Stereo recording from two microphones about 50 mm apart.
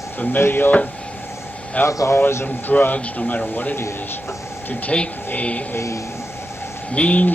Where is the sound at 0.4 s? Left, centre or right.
Left.